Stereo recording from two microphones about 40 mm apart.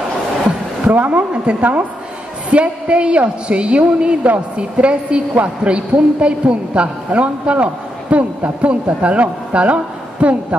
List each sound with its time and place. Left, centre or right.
0.8 s a man's voice: right
1.3 s a man's voice: right